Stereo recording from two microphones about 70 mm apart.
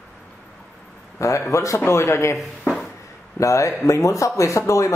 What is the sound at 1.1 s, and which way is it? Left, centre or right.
A man's voice, left.